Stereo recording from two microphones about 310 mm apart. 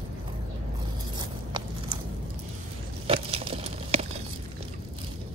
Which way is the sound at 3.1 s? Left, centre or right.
Centre.